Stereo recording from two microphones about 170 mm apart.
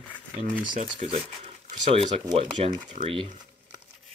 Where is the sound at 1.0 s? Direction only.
35° right (ahead or behind).